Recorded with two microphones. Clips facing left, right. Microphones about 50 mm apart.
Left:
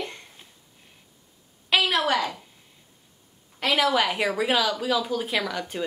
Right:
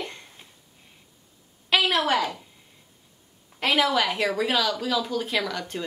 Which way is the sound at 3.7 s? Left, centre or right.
Centre.